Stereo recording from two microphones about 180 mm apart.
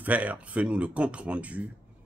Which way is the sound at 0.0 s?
10° right (ahead or behind).